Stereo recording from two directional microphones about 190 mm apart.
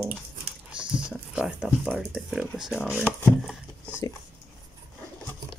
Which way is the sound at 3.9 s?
15° left (ahead or behind).